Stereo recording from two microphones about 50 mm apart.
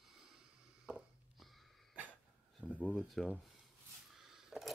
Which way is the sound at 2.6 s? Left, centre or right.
Left.